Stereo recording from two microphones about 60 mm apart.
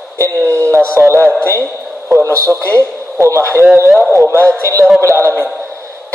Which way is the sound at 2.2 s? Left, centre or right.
Right.